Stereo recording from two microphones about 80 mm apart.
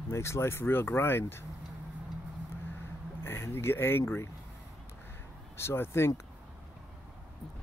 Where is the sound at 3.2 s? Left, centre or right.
Left.